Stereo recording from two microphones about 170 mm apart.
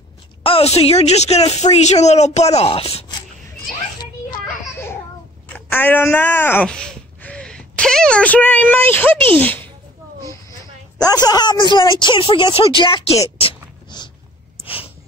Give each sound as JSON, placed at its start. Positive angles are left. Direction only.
{"t": 0.4, "sound": "a woman's voice", "side_deg": 35}
{"t": 5.5, "sound": "a child's voice", "side_deg": 10}
{"t": 11.0, "sound": "a woman's voice", "side_deg": 25}
{"t": 13.4, "sound": "a sound", "side_deg": 30}